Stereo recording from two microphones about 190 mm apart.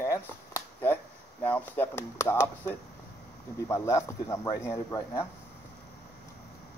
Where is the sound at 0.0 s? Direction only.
10° left (ahead or behind).